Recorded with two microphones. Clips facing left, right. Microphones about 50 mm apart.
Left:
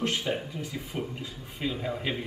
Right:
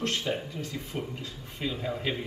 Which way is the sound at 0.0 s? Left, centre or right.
Centre.